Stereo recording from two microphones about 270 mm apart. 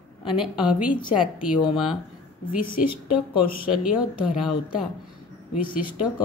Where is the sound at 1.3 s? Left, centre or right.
Centre.